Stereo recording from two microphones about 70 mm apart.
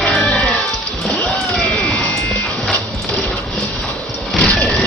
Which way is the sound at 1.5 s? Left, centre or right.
Centre.